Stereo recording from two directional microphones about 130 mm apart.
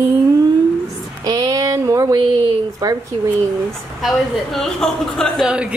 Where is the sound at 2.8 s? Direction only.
30° right (ahead or behind).